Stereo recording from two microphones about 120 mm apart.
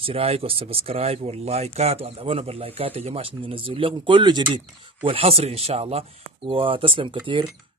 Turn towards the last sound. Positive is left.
turn(degrees=-45)  # may be behind; listen again after turning